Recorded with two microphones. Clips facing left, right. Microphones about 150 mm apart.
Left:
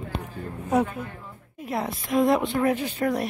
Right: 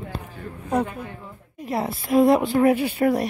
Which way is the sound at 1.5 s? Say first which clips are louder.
Right 3 dB; centre (ahead or behind).